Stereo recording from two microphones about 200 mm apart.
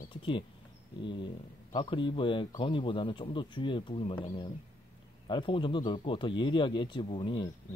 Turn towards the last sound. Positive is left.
turn(degrees=25)  # may be behind; listen again after turning